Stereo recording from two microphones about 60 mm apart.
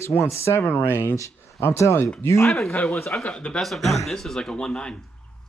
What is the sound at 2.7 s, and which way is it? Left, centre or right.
Speech, left.